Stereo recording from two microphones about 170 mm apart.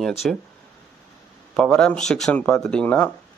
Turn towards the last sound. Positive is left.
turn(degrees=10)  # may be behind; listen again after turning